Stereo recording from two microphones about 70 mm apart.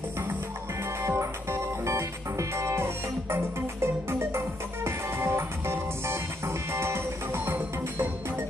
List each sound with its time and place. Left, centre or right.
1.0 s music: right